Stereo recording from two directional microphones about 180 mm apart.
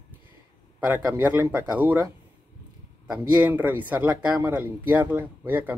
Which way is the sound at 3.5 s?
10° right (ahead or behind).